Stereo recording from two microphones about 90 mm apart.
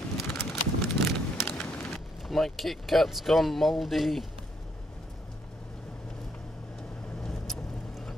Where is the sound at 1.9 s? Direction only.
Centre (ahead or behind).